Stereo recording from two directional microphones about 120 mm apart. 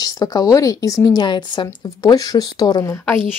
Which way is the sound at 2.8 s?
20° left (ahead or behind).